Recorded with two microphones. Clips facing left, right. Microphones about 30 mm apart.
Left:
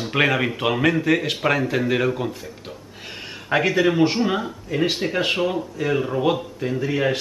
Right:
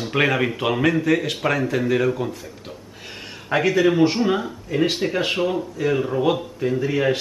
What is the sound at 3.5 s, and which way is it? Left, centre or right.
Speech, centre.